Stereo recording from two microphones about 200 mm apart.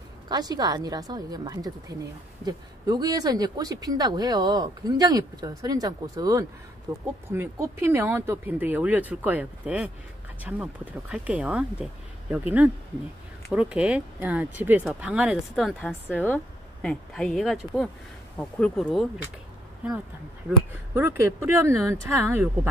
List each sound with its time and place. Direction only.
0.3 s speech: 20° right (ahead or behind); by 19.0 s 5° left (ahead or behind)
20.4 s speech: 10° right (ahead or behind)